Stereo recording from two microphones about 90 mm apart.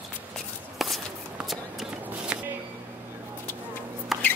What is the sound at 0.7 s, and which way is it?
Walk, centre (ahead or behind).